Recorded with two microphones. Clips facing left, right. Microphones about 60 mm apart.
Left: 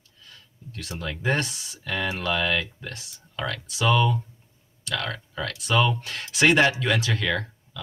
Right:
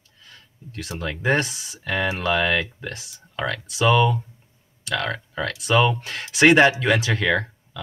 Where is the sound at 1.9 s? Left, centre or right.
Centre.